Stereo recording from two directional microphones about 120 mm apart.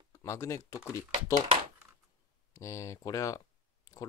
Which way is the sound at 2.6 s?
25° left (ahead or behind).